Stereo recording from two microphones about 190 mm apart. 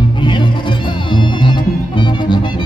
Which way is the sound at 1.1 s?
25° left (ahead or behind).